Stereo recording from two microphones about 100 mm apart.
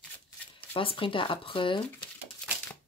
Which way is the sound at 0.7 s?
60° left (ahead or behind).